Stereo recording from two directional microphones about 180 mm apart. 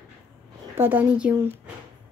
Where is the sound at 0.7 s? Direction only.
10° right (ahead or behind).